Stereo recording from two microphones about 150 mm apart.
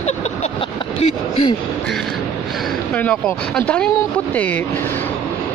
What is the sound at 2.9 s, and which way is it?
Speech, 5° left (ahead or behind).